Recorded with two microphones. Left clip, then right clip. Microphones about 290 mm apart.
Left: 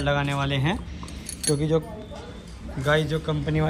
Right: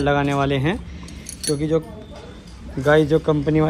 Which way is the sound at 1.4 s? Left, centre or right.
Left.